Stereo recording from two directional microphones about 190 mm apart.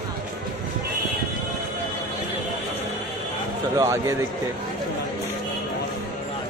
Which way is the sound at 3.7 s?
15° right (ahead or behind).